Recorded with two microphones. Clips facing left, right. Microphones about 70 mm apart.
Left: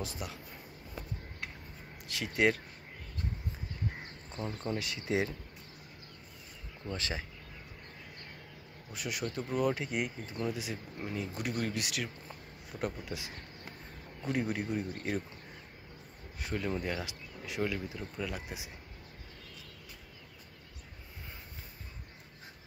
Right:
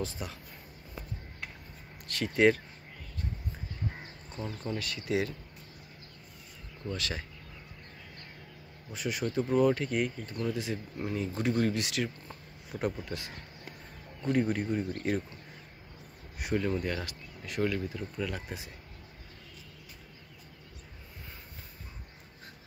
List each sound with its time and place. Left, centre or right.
0.0 s speech: centre
2.0 s speech: centre
4.6 s speech: centre
6.9 s speech: left
8.9 s speech: centre
16.3 s a sound: centre
16.6 s speech: centre